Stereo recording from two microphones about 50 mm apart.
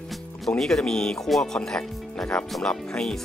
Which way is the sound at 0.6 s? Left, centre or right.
Centre.